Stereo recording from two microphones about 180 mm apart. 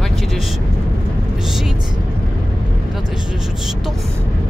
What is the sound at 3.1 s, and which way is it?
Vehicle, 5° right (ahead or behind).